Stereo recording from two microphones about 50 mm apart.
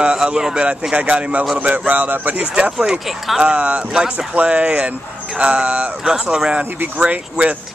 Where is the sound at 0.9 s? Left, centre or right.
Right.